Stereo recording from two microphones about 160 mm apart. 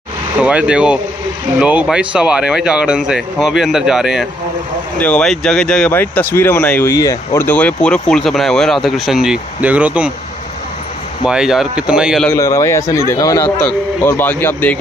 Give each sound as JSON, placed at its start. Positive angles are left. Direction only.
{"t": 0.4, "sound": "speech", "side_deg": -5}
{"t": 11.2, "sound": "speech", "side_deg": -5}
{"t": 12.3, "sound": "a man's voice", "side_deg": 20}